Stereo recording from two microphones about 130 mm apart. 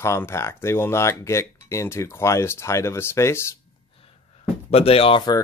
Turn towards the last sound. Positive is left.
turn(degrees=45)  # may be behind; listen again after turning